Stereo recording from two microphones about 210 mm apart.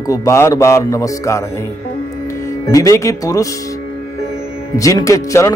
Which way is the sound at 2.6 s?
15° left (ahead or behind).